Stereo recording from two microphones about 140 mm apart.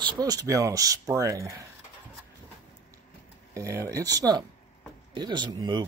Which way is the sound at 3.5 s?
20° right (ahead or behind).